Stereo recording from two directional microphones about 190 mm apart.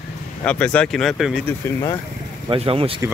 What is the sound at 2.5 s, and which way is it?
Speech, 30° right (ahead or behind).